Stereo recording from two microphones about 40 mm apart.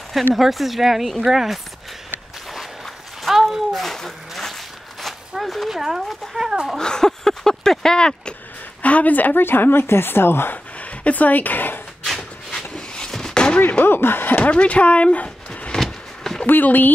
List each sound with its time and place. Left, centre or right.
0.3 s speech: centre
2.5 s walk: centre
3.7 s a sound: centre
5.3 s speech: centre
6.8 s speech: centre
8.8 s speech: left
10.5 s a sound: left
12.2 s a sound: centre
13.6 s speech: left
13.8 s speech: left
14.3 s speech: left
16.4 s speech: left